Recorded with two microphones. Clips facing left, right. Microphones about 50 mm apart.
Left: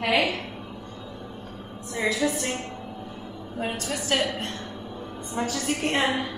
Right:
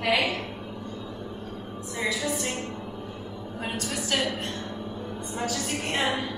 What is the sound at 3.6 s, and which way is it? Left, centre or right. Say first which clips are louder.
Speech: left 2 dB; centre.